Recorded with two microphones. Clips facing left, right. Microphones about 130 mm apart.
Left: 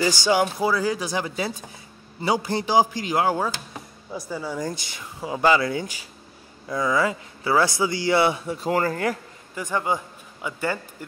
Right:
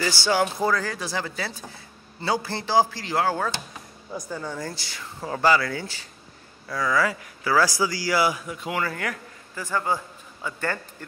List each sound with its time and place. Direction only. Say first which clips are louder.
0.0 s speech: left 3 dB; 15° left (ahead or behind)